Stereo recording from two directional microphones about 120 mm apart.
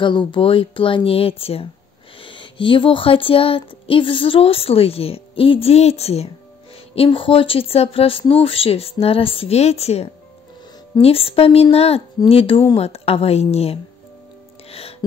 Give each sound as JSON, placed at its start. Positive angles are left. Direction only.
{"t": 0.0, "sound": "speech", "side_deg": 40}
{"t": 7.0, "sound": "a woman's voice", "side_deg": 45}
{"t": 14.7, "sound": "music", "side_deg": 55}